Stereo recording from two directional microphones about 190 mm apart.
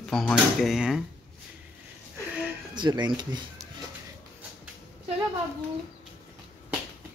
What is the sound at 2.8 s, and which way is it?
Speech, 25° right (ahead or behind).